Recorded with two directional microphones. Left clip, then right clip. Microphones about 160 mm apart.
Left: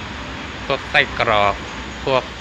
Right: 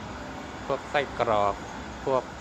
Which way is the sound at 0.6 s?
10° right (ahead or behind).